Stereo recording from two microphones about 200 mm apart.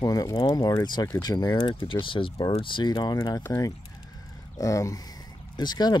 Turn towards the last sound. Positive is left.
turn(degrees=20)  # may be behind; listen again after turning